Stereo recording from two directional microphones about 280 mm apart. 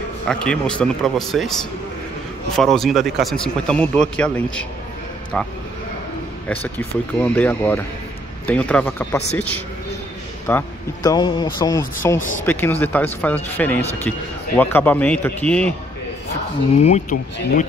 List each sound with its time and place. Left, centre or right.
0.3 s speech: centre
2.5 s speech: centre
6.5 s speech: centre
16.7 s speech: left